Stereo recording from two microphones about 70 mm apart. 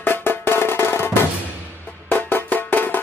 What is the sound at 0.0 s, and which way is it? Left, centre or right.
Music, left.